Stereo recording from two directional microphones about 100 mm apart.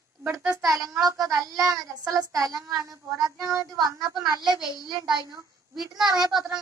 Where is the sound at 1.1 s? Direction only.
35° right (ahead or behind).